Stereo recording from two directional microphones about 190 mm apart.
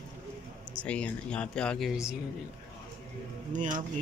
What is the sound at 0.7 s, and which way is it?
Speech, 5° left (ahead or behind).